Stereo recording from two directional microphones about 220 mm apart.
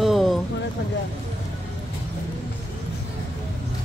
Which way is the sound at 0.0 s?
Centre (ahead or behind).